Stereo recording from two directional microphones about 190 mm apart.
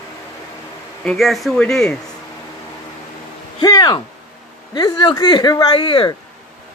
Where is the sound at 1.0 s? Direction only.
Centre (ahead or behind).